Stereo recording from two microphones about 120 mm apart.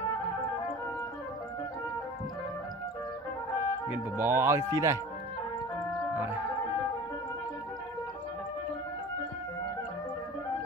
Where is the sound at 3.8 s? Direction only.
15° right (ahead or behind).